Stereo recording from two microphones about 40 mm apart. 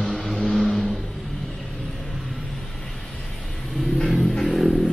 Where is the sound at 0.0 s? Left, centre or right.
Centre.